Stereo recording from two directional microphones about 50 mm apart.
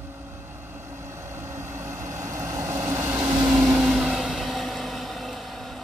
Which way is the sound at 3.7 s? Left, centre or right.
Centre.